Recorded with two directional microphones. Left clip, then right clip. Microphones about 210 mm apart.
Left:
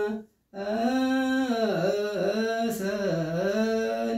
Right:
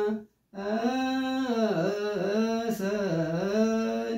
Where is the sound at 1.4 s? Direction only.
10° left (ahead or behind).